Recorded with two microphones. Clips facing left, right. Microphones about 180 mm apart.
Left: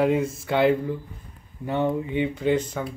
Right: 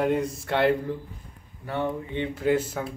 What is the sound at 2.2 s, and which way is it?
Speech, 5° right (ahead or behind).